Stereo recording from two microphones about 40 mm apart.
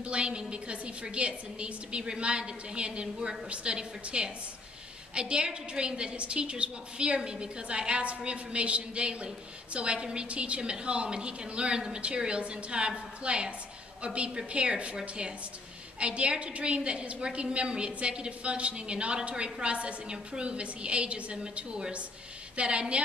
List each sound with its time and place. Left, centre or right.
0.0 s a woman's voice: right